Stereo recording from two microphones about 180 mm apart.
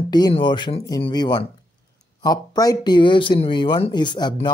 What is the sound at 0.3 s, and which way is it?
Speech, 25° left (ahead or behind).